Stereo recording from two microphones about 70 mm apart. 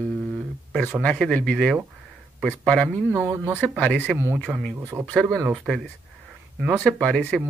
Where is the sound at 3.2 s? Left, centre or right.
Right.